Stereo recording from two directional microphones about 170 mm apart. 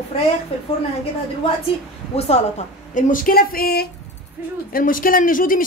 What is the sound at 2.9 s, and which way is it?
Speech, 50° left (ahead or behind).